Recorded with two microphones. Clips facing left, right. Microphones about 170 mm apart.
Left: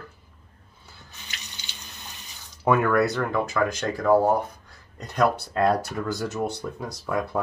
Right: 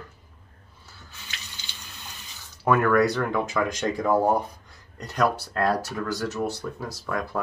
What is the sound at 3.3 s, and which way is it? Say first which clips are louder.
Speech: left 1 dB; 10° right (ahead or behind).